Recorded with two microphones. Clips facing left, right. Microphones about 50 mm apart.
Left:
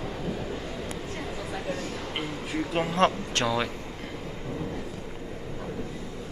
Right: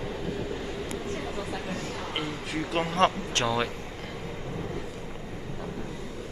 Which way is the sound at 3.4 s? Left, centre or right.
Centre.